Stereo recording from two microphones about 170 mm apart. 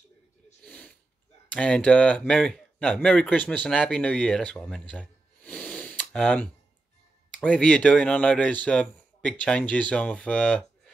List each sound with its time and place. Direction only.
0.7 s snort: 5° left (ahead or behind)
1.5 s speech: 5° left (ahead or behind)